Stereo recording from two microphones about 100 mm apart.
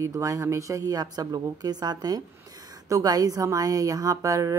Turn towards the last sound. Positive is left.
turn(degrees=-35)  # may be behind; listen again after turning